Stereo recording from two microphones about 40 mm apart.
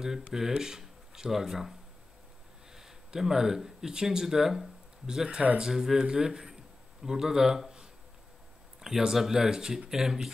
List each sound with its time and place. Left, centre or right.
0.3 s speech: centre
5.0 s a man's voice: right